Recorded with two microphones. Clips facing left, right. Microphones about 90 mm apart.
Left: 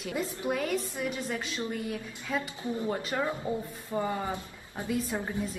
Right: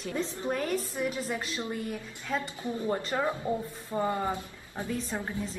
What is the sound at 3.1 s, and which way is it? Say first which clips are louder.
Speech: right 1 dB; 5° right (ahead or behind).